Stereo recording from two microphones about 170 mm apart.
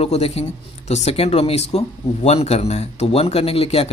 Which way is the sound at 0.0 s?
35° left (ahead or behind).